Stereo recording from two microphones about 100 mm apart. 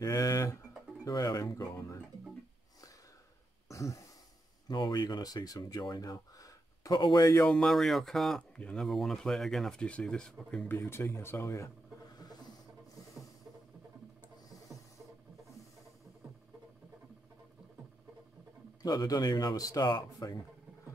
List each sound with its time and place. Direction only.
0.0 s speech: 35° left (ahead or behind)
1.0 s a sound: 40° left (ahead or behind)
3.6 s throat clearing: 30° left (ahead or behind)
4.6 s speech: 45° left (ahead or behind)
6.1 s a sound: 35° left (ahead or behind)
7.0 s speech: 40° left (ahead or behind)
7.4 s speech: 5° left (ahead or behind)
10.9 s speech: 25° left (ahead or behind)
18.8 s speech: 40° left (ahead or behind)